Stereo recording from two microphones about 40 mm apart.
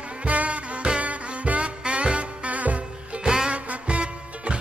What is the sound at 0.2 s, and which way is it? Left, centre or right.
Music, right.